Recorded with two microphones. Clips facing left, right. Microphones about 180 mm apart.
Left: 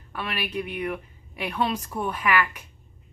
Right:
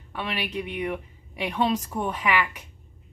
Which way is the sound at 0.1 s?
20° right (ahead or behind).